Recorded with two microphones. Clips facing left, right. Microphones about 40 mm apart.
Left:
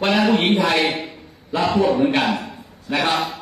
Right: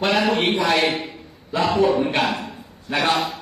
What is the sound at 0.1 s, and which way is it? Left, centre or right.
A man's voice, centre.